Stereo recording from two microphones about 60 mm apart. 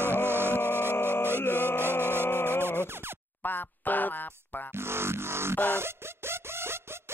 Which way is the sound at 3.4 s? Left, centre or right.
Left.